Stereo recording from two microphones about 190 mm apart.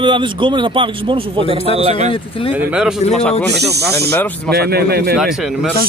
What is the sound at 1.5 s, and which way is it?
Speech, 30° left (ahead or behind).